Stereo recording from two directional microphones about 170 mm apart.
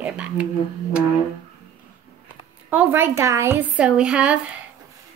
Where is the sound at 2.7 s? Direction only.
10° right (ahead or behind).